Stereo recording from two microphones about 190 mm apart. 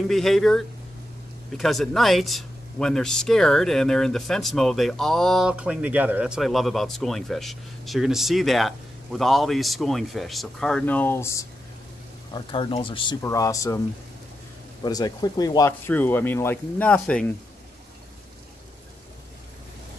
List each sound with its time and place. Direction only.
0.1 s speech: centre (ahead or behind)
12.3 s speech: 25° left (ahead or behind)
14.8 s speech: 20° left (ahead or behind)
15.9 s speech: 10° left (ahead or behind)